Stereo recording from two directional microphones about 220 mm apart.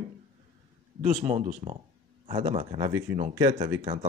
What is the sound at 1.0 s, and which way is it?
Speech, 30° right (ahead or behind).